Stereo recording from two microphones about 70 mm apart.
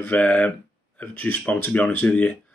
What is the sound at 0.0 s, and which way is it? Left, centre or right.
Speech, left.